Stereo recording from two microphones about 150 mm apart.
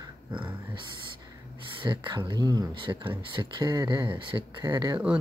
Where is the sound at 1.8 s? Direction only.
30° right (ahead or behind).